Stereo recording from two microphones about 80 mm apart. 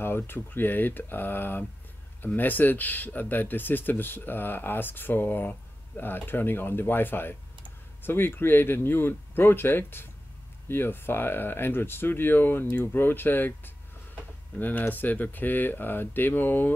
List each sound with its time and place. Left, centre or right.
0.0 s speech: left